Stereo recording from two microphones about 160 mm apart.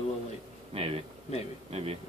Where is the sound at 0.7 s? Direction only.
40° right (ahead or behind).